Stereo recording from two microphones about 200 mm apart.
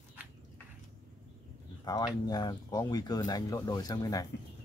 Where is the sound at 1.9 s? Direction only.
20° left (ahead or behind).